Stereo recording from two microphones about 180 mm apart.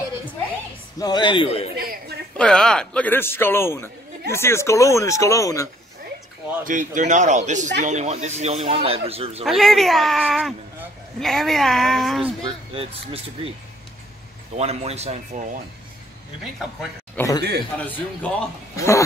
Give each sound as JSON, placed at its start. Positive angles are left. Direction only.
{"t": 0.9, "sound": "speech", "side_deg": 20}
{"t": 1.8, "sound": "a woman's voice", "side_deg": -55}
{"t": 2.3, "sound": "a man's voice", "side_deg": 5}
{"t": 6.6, "sound": "speech", "side_deg": -45}
{"t": 9.4, "sound": "speech", "side_deg": 0}
{"t": 12.7, "sound": "speech", "side_deg": -35}
{"t": 14.6, "sound": "speech", "side_deg": -35}
{"t": 17.1, "sound": "a man's voice", "side_deg": 15}
{"t": 17.4, "sound": "a man's voice", "side_deg": -65}
{"t": 17.7, "sound": "a man's voice", "side_deg": 10}